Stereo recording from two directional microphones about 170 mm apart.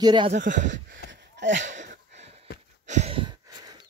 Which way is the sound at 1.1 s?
90° right.